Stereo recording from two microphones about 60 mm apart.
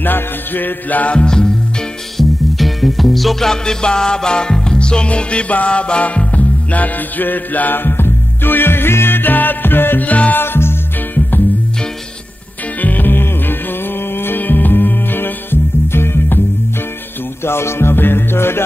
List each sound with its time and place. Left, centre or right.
0.0 s music: left; by 1.5 s centre
2.1 s music: centre; by 10.4 s left
10.4 s music: left
12.8 s music: left
17.5 s music: left